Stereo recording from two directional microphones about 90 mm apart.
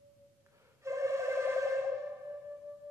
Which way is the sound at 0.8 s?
35° right (ahead or behind).